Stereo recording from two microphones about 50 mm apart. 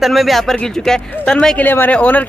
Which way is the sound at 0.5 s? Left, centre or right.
Centre.